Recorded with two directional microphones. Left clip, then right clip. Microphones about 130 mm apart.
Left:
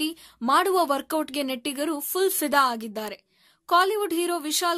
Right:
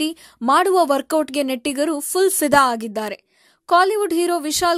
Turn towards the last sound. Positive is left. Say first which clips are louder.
# right 6 dB
turn(degrees=-45)  # may be behind; listen again after turning